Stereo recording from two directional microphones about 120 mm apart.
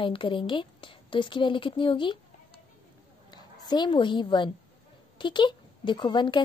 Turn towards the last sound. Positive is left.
turn(degrees=40)  # may be behind; listen again after turning